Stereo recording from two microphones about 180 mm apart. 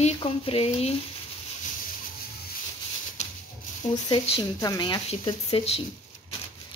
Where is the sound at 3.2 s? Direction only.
40° left (ahead or behind).